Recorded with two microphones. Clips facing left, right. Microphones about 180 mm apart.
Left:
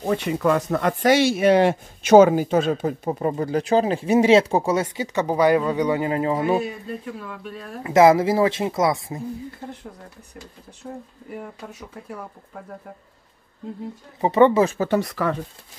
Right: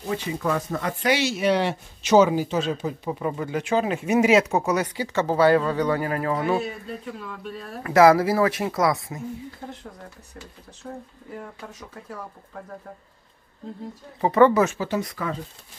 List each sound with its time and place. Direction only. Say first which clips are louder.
0.0 s speech: left 5 dB; 65° left (ahead or behind)
1.0 s speech: left 5 dB; 50° left (ahead or behind); by 6.6 s 25° left (ahead or behind)
7.2 s speech: left 1 dB; 5° left (ahead or behind)
7.8 s speech: left 1 dB; 20° left (ahead or behind)
11.3 s speech: left 2 dB; 10° left (ahead or behind)
14.2 s speech: left 1 dB; 25° left (ahead or behind)
14.8 s speech: left 5 dB; 65° left (ahead or behind)